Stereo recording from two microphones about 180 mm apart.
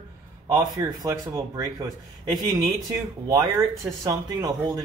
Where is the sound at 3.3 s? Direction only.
20° right (ahead or behind).